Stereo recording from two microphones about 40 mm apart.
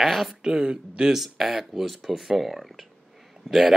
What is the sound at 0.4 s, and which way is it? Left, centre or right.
Speech, centre.